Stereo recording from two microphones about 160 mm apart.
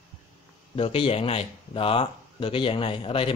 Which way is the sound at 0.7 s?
35° left (ahead or behind).